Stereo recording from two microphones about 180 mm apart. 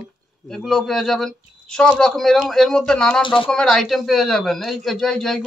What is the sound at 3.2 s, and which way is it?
Speech, 30° left (ahead or behind).